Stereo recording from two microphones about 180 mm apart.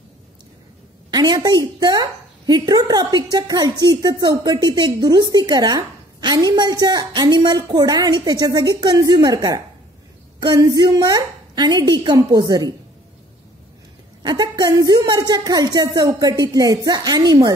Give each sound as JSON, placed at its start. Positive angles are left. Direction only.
{"t": 1.1, "sound": "a woman's voice", "side_deg": -20}
{"t": 14.2, "sound": "a woman's voice", "side_deg": -25}